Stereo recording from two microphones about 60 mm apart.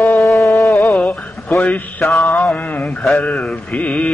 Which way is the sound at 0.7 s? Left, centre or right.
Left.